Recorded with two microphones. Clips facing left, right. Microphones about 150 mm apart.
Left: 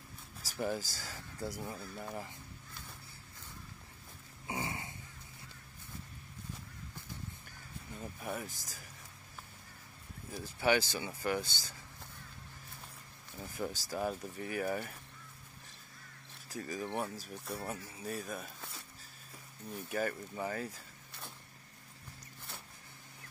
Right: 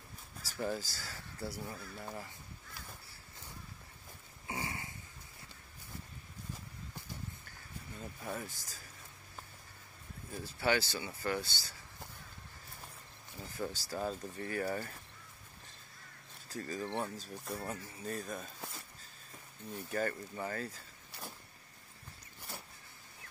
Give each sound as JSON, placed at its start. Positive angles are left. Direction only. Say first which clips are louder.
{"t": 0.5, "sound": "speech", "louder": "left 1 dB", "side_deg": 15}
{"t": 4.5, "sound": "a sound", "louder": "left 2 dB", "side_deg": 20}
{"t": 8.0, "sound": "speech", "louder": "left 1 dB", "side_deg": 15}
{"t": 10.3, "sound": "speech", "louder": "left 2 dB", "side_deg": 15}
{"t": 13.4, "sound": "speech", "louder": "left 1 dB", "side_deg": 15}
{"t": 16.4, "sound": "speech", "louder": "even", "side_deg": 10}
{"t": 18.6, "sound": "music", "louder": "right 3 dB", "side_deg": 0}
{"t": 19.7, "sound": "speech", "louder": "even", "side_deg": 10}